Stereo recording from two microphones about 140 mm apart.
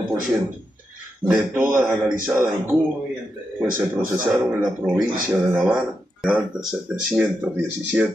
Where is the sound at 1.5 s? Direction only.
20° right (ahead or behind).